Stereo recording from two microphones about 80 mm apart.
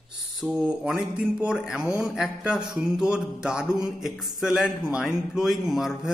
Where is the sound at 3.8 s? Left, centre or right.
Centre.